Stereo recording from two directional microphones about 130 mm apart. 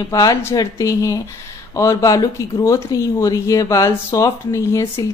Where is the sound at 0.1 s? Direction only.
25° left (ahead or behind).